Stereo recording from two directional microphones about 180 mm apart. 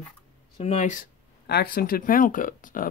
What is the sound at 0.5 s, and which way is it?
Speech, 35° left (ahead or behind).